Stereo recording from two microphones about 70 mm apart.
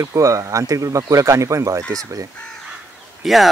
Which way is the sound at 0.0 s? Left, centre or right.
Right.